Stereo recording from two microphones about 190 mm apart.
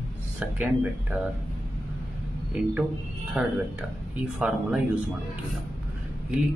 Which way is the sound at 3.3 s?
5° right (ahead or behind).